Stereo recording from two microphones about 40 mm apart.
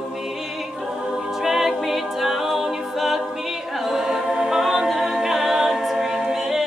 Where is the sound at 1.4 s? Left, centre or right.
Centre.